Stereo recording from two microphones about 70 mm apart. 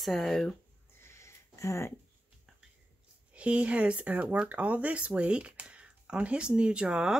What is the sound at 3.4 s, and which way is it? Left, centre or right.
Speech, centre.